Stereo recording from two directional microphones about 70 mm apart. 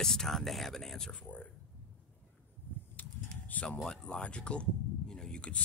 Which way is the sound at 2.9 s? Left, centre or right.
Left.